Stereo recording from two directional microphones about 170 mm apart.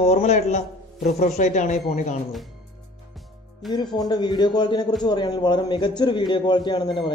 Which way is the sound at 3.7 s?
25° left (ahead or behind).